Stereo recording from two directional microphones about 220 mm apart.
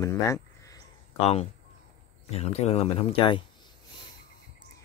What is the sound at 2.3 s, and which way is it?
Speech, 30° left (ahead or behind).